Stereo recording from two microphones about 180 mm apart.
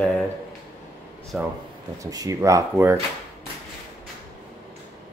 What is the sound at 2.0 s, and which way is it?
Speech, 20° right (ahead or behind).